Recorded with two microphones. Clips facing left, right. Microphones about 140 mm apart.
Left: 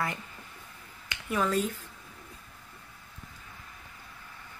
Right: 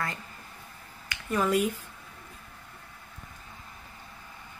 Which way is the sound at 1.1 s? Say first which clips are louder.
Right 1 dB; 25° left (ahead or behind).